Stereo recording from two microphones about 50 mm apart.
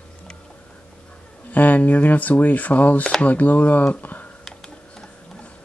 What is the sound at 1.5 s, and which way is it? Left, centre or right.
Speech, left.